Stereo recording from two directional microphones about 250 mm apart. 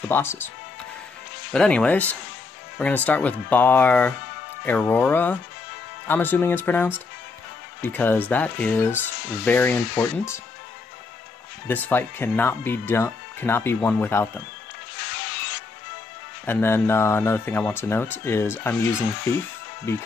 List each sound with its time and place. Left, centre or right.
0.1 s speech: centre
1.5 s speech: centre
11.6 s speech: centre
16.4 s speech: centre